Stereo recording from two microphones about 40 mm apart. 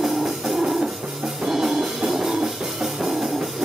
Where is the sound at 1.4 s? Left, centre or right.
Centre.